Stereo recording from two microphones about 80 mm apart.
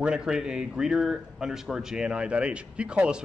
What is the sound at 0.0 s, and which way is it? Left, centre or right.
A man's voice, centre.